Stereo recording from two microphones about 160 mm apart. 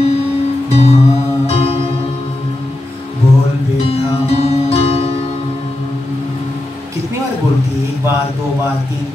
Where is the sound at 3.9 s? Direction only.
40° left (ahead or behind).